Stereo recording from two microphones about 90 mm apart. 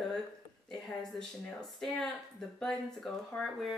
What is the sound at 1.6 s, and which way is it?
Speech, 5° left (ahead or behind).